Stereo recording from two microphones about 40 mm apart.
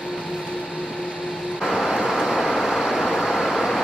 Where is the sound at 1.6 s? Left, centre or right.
Centre.